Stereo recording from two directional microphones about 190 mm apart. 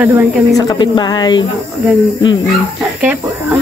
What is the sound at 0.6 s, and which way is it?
Speech, 20° left (ahead or behind).